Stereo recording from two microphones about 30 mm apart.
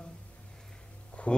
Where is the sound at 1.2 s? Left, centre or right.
Left.